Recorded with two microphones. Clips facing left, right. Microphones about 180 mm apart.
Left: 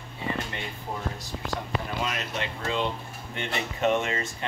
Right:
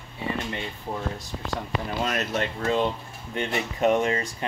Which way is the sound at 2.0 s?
45° right (ahead or behind).